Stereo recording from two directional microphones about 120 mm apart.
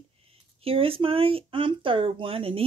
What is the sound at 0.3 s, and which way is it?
Speech, 55° right (ahead or behind).